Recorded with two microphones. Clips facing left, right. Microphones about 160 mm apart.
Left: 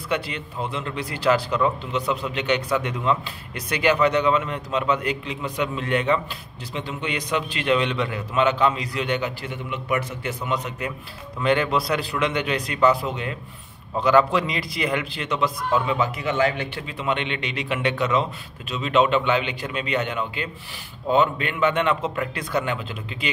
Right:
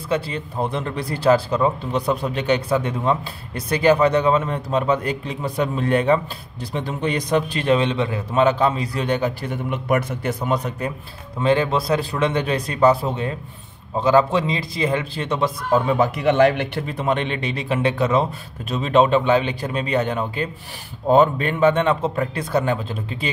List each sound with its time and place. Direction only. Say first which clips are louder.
0.7 s a man's voice: right 4 dB; 35° right (ahead or behind)
16.0 s speech: right 6 dB; 55° right (ahead or behind)
17.0 s a man's voice: right 3 dB; 40° right (ahead or behind)